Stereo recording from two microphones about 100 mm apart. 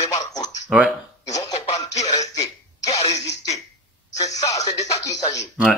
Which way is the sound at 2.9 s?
35° left (ahead or behind).